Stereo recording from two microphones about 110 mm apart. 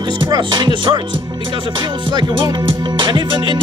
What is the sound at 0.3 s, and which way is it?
Music, 45° right (ahead or behind).